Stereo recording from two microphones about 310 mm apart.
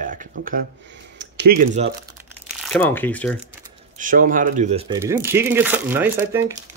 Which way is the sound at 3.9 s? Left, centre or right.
Right.